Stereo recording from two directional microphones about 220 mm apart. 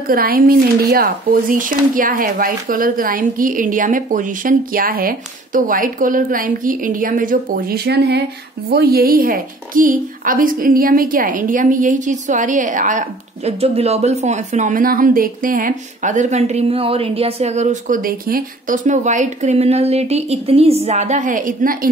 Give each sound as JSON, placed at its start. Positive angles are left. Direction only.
{"t": 0.1, "sound": "speech", "side_deg": -40}